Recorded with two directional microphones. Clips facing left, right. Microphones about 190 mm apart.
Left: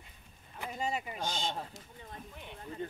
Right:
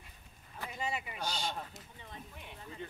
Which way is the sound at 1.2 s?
20° left (ahead or behind).